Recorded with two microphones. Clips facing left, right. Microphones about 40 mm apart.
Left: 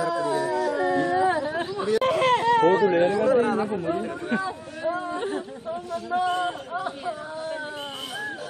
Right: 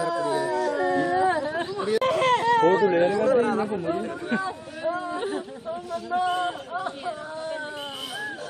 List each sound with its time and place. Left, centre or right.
0.0 s howl: centre
0.5 s a sound: centre
2.0 s speech: centre